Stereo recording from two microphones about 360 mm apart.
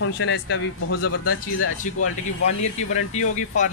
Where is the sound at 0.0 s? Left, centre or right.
Left.